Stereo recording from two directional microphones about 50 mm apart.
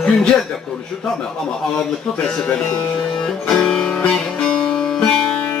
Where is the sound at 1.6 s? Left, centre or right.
Centre.